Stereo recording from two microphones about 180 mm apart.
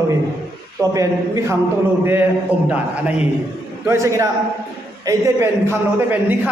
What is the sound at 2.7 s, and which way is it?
A man's voice, 5° right (ahead or behind).